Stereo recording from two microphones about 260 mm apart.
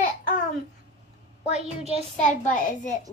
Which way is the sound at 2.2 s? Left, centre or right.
Left.